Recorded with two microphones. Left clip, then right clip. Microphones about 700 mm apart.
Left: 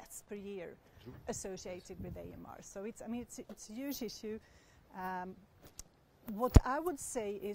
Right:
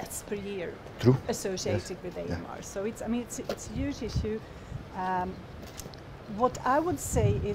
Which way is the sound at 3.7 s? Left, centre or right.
Left.